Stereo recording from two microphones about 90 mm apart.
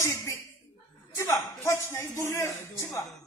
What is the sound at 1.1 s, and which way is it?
A man's voice, 35° left (ahead or behind).